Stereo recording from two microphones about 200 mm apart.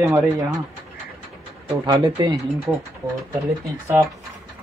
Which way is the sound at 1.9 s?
20° right (ahead or behind).